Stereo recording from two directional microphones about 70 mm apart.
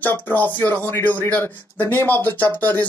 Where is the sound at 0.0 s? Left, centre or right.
Left.